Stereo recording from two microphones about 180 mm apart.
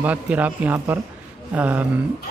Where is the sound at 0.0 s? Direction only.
10° right (ahead or behind).